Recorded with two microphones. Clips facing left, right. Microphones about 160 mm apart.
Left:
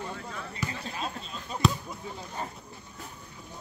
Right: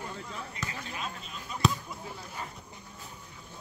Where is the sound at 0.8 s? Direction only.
35° left (ahead or behind).